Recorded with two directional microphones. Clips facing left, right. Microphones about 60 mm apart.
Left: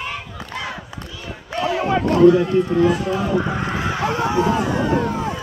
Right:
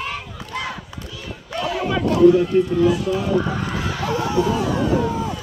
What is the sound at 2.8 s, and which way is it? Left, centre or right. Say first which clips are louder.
Speech: left 1 dB; left.